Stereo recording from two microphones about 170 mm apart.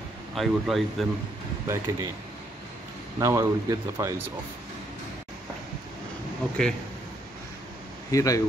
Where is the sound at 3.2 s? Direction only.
20° right (ahead or behind).